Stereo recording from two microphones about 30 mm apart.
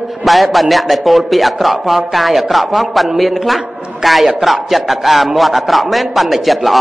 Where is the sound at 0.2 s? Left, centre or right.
Centre.